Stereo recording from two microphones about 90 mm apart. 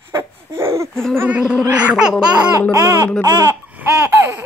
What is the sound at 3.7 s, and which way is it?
Laughter, 25° right (ahead or behind).